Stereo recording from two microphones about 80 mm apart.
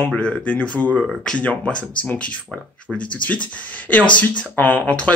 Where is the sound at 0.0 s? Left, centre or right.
Centre.